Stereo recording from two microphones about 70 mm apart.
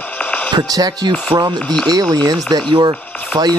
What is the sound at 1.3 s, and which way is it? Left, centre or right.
Speech, right.